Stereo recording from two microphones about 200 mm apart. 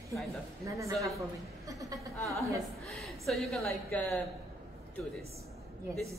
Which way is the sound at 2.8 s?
Centre (ahead or behind).